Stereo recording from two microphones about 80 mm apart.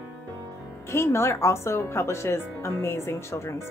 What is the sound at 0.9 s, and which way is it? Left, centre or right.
Speech, left.